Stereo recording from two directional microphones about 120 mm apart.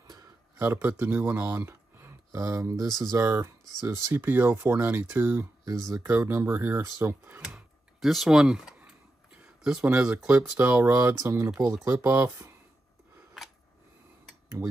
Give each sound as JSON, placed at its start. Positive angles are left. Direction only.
{"t": 0.6, "sound": "speech", "side_deg": -15}
{"t": 7.4, "sound": "a sound", "side_deg": 0}
{"t": 9.9, "sound": "speech", "side_deg": -10}